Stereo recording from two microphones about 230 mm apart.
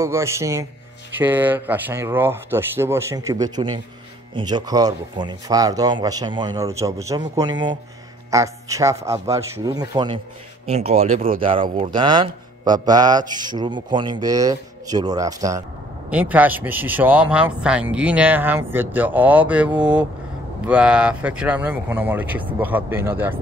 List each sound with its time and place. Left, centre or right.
0.0 s a man's voice: centre